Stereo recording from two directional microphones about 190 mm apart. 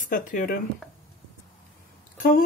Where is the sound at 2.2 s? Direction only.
50° left (ahead or behind).